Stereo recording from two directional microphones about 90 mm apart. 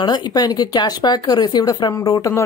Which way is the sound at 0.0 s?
55° left (ahead or behind).